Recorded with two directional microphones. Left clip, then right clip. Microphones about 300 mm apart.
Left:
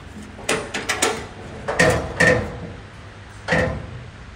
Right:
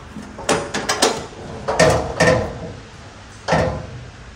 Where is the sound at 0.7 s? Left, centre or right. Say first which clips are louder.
Right 3 dB; right.